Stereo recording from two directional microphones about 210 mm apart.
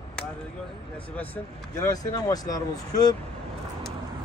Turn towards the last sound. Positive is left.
turn(degrees=20)  # may be behind; listen again after turning